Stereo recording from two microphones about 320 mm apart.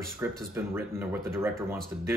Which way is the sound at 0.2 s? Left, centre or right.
Centre.